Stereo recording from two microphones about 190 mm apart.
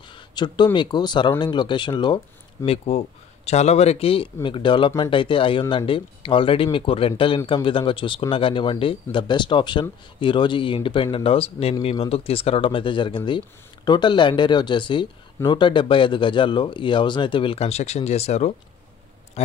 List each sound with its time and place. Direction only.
0.4 s speech: 20° left (ahead or behind)